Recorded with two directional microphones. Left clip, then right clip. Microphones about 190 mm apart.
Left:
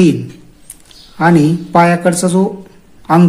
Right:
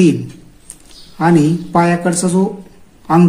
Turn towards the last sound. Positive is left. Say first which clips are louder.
# left 1 dB
turn(degrees=10)  # may be behind; listen again after turning